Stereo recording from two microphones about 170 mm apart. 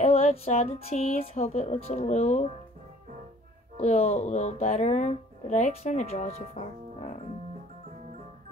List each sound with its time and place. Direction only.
0.0 s speech: 40° left (ahead or behind)
3.7 s speech: 45° left (ahead or behind)